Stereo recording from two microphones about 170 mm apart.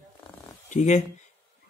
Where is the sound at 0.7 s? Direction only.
45° left (ahead or behind).